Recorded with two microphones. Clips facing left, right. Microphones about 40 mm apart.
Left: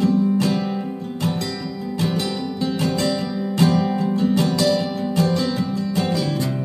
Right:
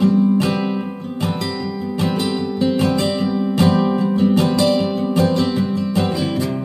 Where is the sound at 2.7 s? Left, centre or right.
Right.